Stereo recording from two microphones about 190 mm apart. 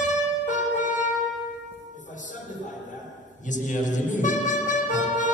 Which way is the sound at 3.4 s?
40° left (ahead or behind).